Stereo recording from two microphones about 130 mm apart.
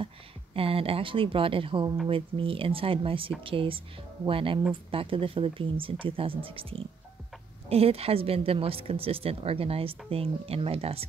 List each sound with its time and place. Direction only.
0.6 s speech: 45° right (ahead or behind)